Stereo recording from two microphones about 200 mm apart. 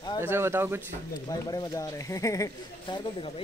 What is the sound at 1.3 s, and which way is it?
Speech, 20° left (ahead or behind).